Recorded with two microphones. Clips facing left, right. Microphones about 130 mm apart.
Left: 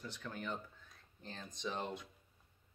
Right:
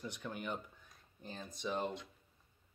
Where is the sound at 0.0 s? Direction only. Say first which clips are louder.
Right 2 dB; 15° right (ahead or behind).